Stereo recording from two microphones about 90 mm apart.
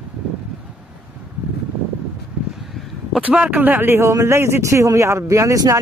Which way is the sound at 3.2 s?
15° right (ahead or behind).